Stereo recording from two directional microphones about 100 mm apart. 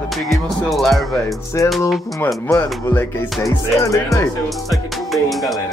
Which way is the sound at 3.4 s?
35° left (ahead or behind).